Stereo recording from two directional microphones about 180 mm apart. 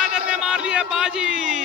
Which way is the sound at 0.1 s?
5° right (ahead or behind).